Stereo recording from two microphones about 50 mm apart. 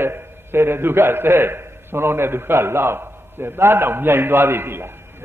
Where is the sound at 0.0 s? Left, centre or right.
Right.